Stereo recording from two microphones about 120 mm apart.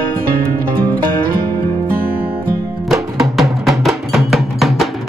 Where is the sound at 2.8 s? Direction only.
Centre (ahead or behind).